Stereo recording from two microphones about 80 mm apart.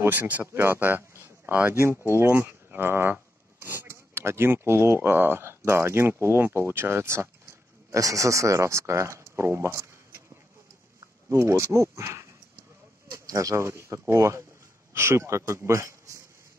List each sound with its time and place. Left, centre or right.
0.0 s speech: right
11.2 s speech: right
13.3 s speech: right